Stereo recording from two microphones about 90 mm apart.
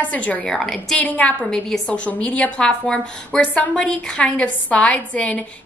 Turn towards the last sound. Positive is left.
turn(degrees=15)  # may be behind; listen again after turning